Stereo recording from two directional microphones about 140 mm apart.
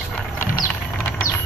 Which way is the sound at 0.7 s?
15° left (ahead or behind).